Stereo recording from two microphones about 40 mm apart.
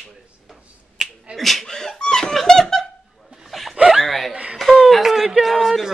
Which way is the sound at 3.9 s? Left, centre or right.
Centre.